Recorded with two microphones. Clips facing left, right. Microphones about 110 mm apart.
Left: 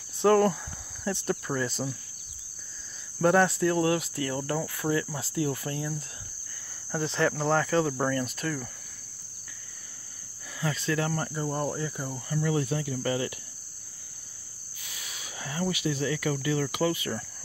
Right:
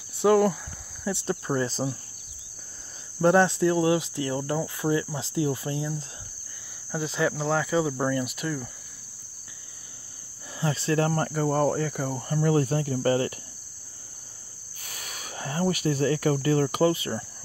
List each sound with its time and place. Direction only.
0.2 s cricket: 10° right (ahead or behind)
1.1 s cricket: 20° right (ahead or behind)
3.2 s cricket: 20° right (ahead or behind)
6.9 s cricket: 5° right (ahead or behind)
10.6 s cricket: 30° right (ahead or behind)
11.2 s cricket: 60° right (ahead or behind); by 13.3 s 40° right (ahead or behind)
14.9 s speech: 50° right (ahead or behind); by 17.1 s 35° right (ahead or behind)